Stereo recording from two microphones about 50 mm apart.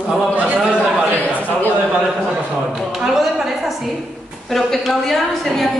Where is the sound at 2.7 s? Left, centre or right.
Centre.